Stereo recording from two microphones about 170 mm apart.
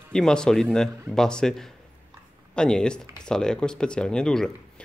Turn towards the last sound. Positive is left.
turn(degrees=5)  # may be behind; listen again after turning